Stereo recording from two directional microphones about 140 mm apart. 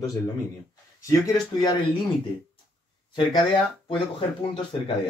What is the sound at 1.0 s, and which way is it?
Speech, 25° left (ahead or behind).